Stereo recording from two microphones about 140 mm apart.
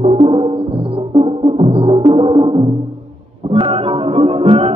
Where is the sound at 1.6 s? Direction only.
45° right (ahead or behind).